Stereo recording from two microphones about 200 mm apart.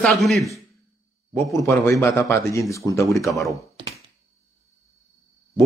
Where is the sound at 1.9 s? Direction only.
Centre (ahead or behind).